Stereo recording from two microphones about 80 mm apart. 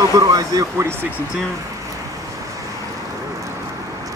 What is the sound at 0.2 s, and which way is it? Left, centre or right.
Speech, right.